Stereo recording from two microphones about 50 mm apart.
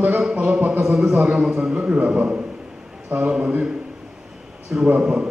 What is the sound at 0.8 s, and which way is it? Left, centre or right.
A man's voice, right.